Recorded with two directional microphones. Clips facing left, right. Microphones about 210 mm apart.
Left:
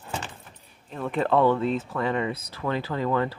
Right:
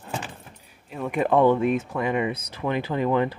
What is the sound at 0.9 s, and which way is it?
Speech, 10° right (ahead or behind).